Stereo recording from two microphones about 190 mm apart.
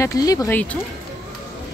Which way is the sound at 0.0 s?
20° left (ahead or behind).